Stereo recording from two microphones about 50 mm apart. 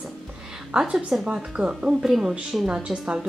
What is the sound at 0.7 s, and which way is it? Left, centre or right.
Speech, right.